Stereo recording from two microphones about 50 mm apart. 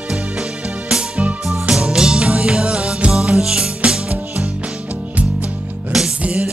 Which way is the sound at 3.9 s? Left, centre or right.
Right.